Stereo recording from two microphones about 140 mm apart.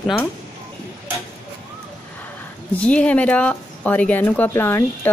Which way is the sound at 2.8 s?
10° left (ahead or behind).